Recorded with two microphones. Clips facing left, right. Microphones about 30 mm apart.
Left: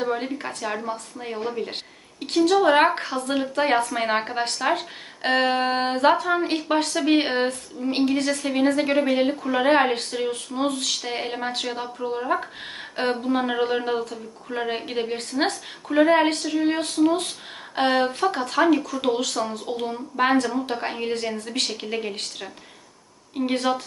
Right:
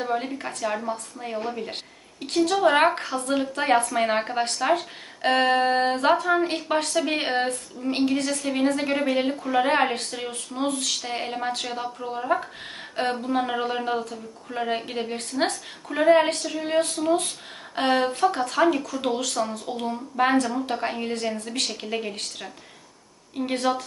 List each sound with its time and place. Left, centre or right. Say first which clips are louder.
0.0 s speech: left 1 dB; centre
19.7 s speech: left 1 dB; centre
23.3 s speech: left 1 dB; centre